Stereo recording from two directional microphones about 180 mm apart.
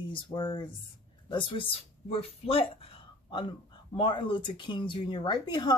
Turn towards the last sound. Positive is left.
turn(degrees=25)  # may be behind; listen again after turning